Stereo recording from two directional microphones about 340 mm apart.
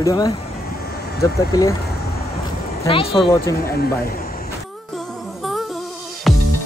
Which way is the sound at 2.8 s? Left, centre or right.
Centre.